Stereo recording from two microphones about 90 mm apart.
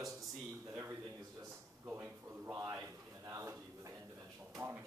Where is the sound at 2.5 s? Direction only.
35° right (ahead or behind).